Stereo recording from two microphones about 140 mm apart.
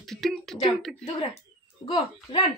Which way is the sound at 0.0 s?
Centre (ahead or behind).